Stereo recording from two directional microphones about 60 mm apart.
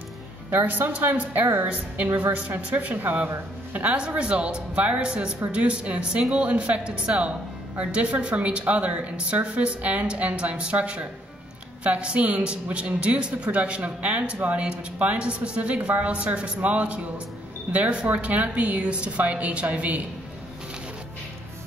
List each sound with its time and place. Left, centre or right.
0.5 s a woman's voice: right
3.7 s a woman's voice: centre